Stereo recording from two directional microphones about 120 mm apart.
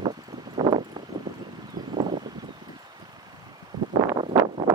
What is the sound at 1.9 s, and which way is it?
Clip-clop, 40° right (ahead or behind).